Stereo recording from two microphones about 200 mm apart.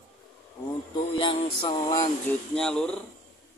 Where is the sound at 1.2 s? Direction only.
25° left (ahead or behind).